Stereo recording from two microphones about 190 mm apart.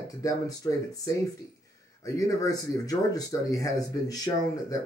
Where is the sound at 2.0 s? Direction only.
15° left (ahead or behind).